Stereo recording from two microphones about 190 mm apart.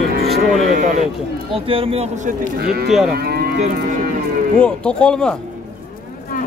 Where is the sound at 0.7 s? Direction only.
40° right (ahead or behind).